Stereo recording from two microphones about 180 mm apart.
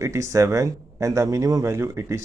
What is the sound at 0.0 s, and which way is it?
A man's voice, 15° right (ahead or behind).